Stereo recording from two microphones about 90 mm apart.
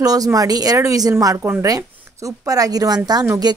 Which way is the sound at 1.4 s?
30° right (ahead or behind).